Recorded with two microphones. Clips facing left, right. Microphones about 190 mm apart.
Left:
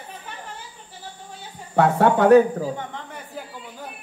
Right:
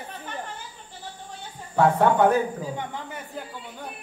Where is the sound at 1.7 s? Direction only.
75° left (ahead or behind).